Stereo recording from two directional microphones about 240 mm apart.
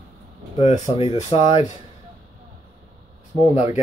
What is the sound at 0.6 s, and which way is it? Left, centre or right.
Speech, left.